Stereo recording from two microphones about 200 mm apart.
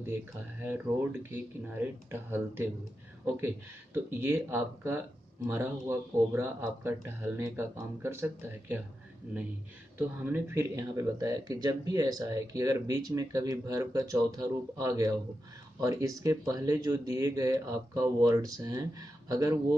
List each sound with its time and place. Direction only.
0.0 s speech: 10° right (ahead or behind)
9.9 s speech: 10° right (ahead or behind)